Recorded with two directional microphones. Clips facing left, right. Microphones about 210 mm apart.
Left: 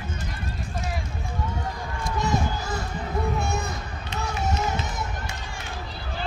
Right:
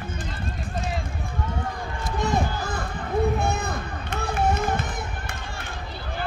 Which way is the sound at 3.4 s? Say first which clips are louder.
Right 2 dB; 55° right (ahead or behind).